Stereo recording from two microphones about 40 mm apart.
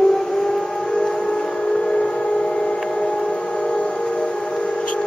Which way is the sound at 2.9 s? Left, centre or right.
Left.